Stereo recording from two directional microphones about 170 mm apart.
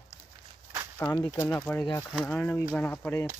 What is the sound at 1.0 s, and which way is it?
Speech, 20° left (ahead or behind).